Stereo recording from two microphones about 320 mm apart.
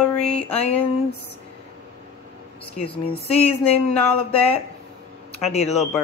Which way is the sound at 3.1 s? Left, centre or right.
Centre.